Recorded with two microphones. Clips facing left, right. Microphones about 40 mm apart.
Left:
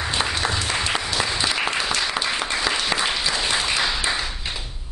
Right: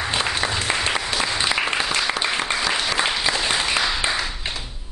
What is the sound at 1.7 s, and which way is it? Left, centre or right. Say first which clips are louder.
Applause: right 1 dB; right.